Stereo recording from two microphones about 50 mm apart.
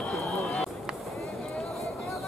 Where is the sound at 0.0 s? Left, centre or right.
Centre.